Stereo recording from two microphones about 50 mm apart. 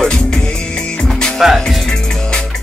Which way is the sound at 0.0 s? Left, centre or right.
Centre.